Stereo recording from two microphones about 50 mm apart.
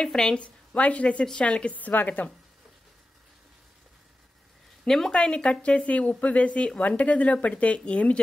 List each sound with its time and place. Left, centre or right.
0.0 s a woman's voice: centre; by 2.2 s left
4.8 s speech: centre; by 8.2 s left